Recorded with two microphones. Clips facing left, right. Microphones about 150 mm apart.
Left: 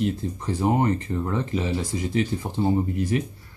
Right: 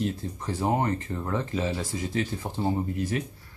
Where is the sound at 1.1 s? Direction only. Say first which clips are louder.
Left 4 dB; 15° left (ahead or behind).